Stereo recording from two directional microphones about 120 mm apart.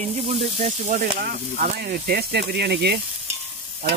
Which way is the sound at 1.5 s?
80° right.